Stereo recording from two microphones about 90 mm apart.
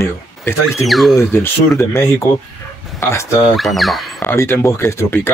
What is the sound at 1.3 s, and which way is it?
Speech, 30° left (ahead or behind).